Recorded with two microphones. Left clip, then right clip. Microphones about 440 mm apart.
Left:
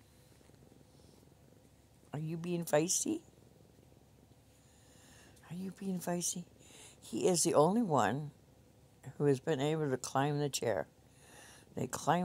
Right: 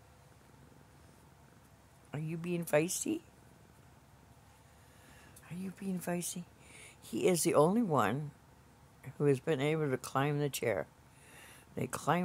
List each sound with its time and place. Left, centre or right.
2.0 s speech: left
5.5 s speech: left